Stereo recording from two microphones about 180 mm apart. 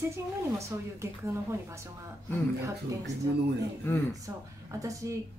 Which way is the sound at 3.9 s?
10° left (ahead or behind).